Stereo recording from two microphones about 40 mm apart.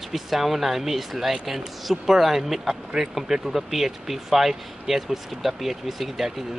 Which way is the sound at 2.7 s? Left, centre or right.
Right.